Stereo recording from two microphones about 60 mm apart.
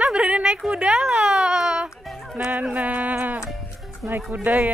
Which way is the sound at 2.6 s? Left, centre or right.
Right.